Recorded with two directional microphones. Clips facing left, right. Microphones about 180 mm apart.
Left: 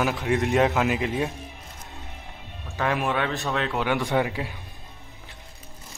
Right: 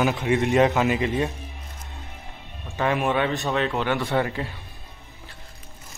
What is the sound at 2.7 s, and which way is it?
A man's voice, centre (ahead or behind).